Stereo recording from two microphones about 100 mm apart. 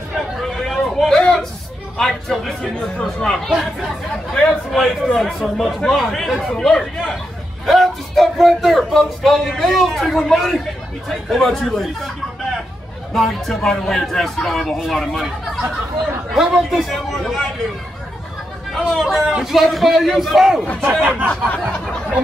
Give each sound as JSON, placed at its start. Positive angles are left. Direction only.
{"t": 0.4, "sound": "chatter", "side_deg": 5}
{"t": 2.0, "sound": "a man's voice", "side_deg": 5}
{"t": 13.1, "sound": "a man's voice", "side_deg": 0}
{"t": 18.7, "sound": "a man's voice", "side_deg": 0}
{"t": 21.3, "sound": "a sound", "side_deg": 15}